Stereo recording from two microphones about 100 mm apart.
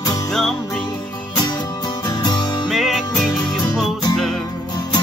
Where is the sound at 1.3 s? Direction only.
40° left (ahead or behind).